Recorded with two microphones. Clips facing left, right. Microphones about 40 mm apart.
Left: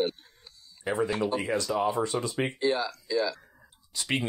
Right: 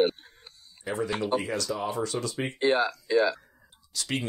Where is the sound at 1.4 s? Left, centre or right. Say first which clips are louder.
Left 3 dB; left.